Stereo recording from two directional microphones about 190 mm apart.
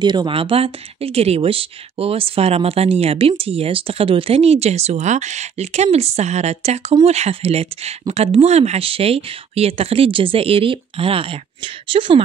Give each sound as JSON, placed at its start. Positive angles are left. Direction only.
{"t": 0.0, "sound": "speech", "side_deg": -25}